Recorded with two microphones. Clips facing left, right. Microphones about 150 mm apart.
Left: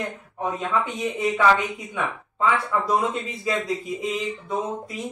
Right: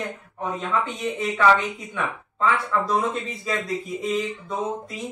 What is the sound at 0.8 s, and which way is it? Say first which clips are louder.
Speech: left 1 dB; centre (ahead or behind).